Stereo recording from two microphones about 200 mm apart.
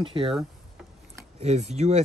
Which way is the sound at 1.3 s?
35° right (ahead or behind).